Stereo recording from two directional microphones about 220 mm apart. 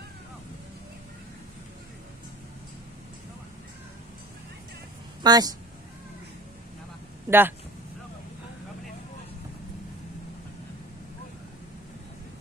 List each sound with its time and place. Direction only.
5.2 s speech: 15° right (ahead or behind)
7.2 s speech: 10° right (ahead or behind)